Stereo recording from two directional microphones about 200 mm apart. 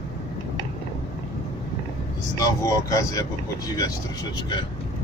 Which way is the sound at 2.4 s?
15° left (ahead or behind).